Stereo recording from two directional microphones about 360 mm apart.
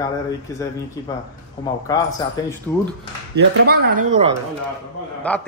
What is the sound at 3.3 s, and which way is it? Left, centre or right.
Speech, right.